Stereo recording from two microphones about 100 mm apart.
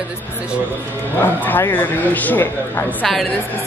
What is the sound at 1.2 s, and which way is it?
Speech, 20° left (ahead or behind).